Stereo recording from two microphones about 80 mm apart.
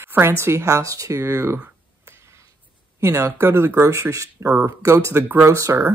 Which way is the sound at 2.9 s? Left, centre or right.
Right.